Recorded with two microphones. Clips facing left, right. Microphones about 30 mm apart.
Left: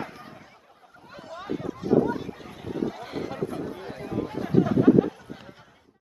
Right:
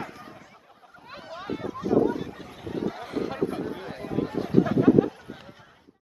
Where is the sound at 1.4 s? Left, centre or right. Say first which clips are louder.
Left 1 dB; centre.